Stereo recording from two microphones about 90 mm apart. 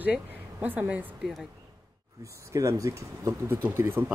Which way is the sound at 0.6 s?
20° right (ahead or behind).